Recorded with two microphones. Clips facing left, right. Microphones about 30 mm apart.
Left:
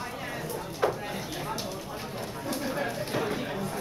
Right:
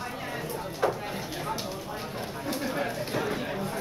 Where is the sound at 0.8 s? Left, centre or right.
Centre.